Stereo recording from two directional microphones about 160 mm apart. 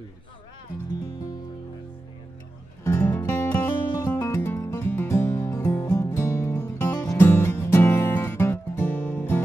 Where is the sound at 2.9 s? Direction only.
15° left (ahead or behind).